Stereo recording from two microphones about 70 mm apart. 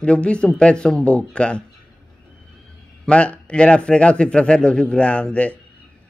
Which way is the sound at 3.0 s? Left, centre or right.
Centre.